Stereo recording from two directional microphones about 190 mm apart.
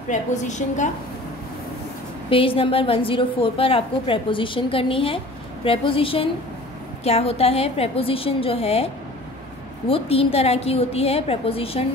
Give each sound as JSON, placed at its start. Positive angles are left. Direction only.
{"t": 0.1, "sound": "a woman's voice", "side_deg": 40}
{"t": 2.2, "sound": "a woman's voice", "side_deg": 30}